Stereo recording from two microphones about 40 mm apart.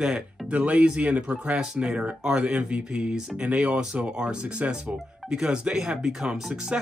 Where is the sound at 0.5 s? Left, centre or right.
Right.